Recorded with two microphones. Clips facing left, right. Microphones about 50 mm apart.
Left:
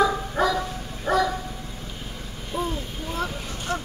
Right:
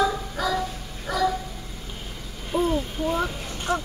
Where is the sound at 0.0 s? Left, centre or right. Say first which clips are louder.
Left 3 dB; left.